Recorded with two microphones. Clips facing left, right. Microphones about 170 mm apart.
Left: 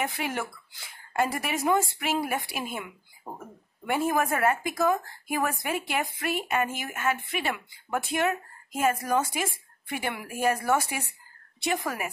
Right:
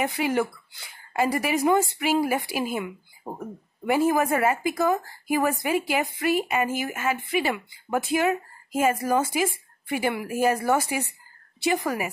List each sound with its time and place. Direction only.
0.0 s speech: centre (ahead or behind)
3.8 s speech: centre (ahead or behind)